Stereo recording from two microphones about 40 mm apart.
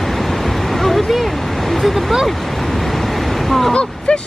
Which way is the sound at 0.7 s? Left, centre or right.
Centre.